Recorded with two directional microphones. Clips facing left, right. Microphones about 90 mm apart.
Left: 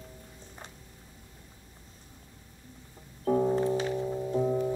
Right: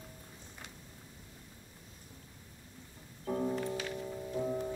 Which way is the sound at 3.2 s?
35° left (ahead or behind).